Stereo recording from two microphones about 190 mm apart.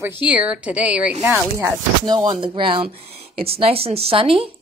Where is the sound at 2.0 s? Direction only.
25° right (ahead or behind).